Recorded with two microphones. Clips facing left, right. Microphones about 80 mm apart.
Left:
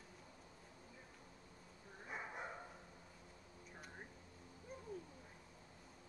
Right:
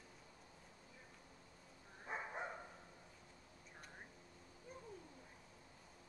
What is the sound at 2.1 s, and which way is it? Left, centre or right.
Dog, right.